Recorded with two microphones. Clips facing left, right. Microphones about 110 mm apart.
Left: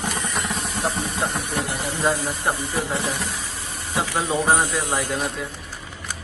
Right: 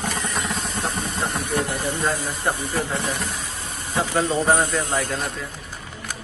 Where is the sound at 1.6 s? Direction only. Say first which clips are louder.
Left 2 dB; 10° left (ahead or behind).